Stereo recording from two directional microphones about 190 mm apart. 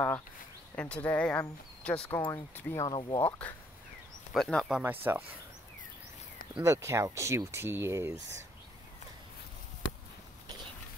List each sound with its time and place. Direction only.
0.7 s speech: 5° left (ahead or behind)
2.9 s speech: 25° left (ahead or behind)
3.3 s speech: 10° left (ahead or behind); by 5.2 s 10° right (ahead or behind)
6.5 s speech: 15° right (ahead or behind)